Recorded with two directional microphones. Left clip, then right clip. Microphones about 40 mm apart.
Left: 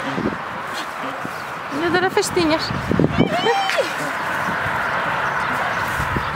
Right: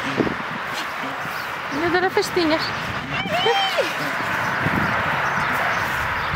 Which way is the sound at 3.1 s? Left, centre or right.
Left.